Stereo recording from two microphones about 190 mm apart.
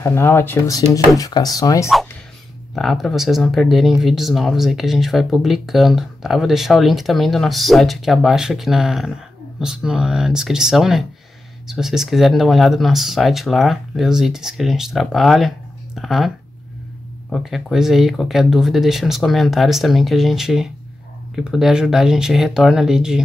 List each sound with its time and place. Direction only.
0.0 s speech: 15° left (ahead or behind)
2.7 s speech: centre (ahead or behind)
17.3 s speech: centre (ahead or behind)